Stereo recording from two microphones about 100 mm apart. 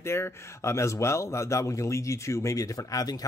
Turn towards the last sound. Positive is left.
turn(degrees=40)  # may be behind; listen again after turning